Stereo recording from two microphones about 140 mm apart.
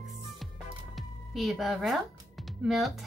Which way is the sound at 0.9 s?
Centre (ahead or behind).